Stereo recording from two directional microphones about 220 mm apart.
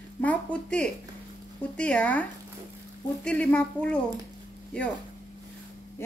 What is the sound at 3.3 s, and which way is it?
Speech, 5° left (ahead or behind).